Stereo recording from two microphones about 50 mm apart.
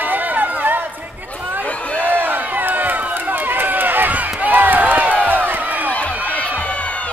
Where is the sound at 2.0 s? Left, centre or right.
Right.